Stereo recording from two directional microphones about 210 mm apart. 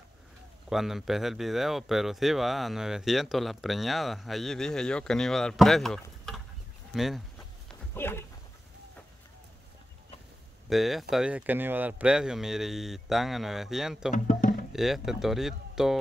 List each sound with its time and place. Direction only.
0.7 s speech: centre (ahead or behind)
7.9 s speech: 10° left (ahead or behind)
10.7 s speech: centre (ahead or behind)
14.1 s music: 40° left (ahead or behind)
14.7 s speech: centre (ahead or behind)